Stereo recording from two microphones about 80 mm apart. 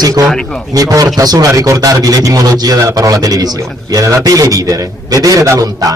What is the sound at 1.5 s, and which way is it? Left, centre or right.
A man's voice, right.